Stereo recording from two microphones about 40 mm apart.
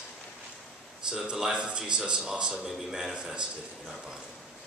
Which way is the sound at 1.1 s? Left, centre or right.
Centre.